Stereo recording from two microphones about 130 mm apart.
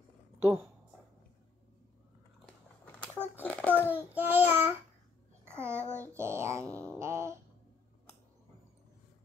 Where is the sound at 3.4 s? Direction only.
10° left (ahead or behind).